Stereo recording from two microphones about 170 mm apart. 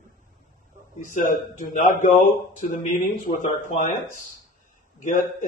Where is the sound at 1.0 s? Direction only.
50° left (ahead or behind).